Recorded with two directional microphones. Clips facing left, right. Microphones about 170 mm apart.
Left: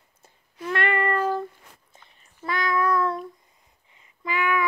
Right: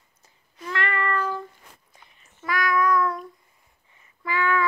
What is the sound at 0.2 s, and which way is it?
Child singing, 55° left (ahead or behind).